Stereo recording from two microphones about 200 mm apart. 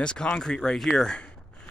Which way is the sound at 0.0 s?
5° left (ahead or behind).